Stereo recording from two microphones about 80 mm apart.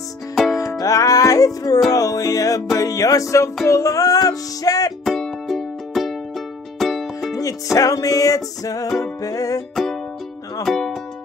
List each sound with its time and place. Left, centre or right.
0.6 s music: left
5.0 s music: centre
7.7 s music: left
10.6 s speech: centre